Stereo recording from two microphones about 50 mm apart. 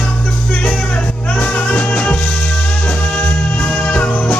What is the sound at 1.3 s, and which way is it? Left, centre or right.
Music, left.